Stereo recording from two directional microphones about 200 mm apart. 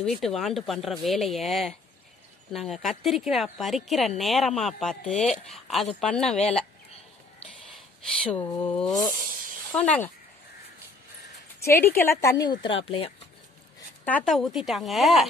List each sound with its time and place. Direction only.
0.0 s speech: centre (ahead or behind)
7.7 s a sound: 5° left (ahead or behind)
9.2 s a sound: 45° right (ahead or behind)
9.7 s a woman's voice: 5° left (ahead or behind)
11.6 s a woman's voice: 10° left (ahead or behind); by 13.1 s 30° left (ahead or behind)
14.0 s speech: 5° left (ahead or behind)